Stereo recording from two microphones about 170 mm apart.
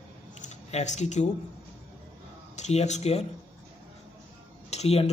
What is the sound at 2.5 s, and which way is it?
Speech, 40° left (ahead or behind).